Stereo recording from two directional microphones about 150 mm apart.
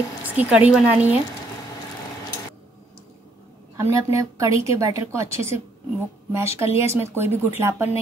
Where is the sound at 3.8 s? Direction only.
20° right (ahead or behind).